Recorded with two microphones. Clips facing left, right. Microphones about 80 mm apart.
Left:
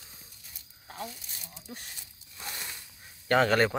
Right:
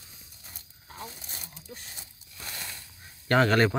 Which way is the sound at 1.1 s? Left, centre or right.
Right.